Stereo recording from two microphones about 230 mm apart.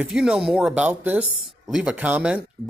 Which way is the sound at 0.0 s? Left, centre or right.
Centre.